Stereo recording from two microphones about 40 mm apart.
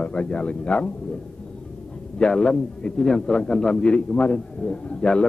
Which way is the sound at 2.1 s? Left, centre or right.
Left.